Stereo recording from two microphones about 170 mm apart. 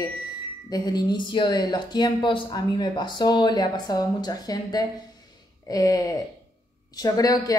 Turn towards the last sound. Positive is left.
turn(degrees=20)  # may be behind; listen again after turning